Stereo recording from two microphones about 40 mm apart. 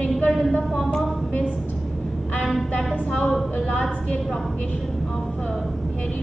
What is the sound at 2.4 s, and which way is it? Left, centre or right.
Music, centre.